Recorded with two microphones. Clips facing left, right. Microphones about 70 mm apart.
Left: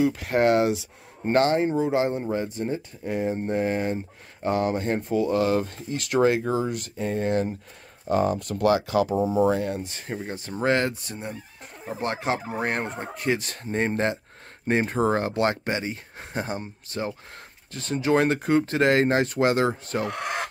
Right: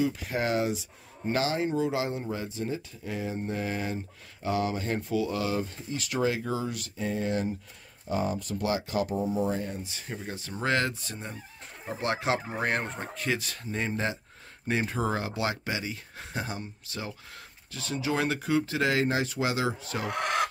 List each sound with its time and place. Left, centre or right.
0.0 s speech: left
1.2 s speech: left
1.6 s speech: left
5.6 s speech: left
6.2 s speech: left
9.8 s speech: left
10.3 s speech: left
12.0 s speech: centre
13.2 s speech: left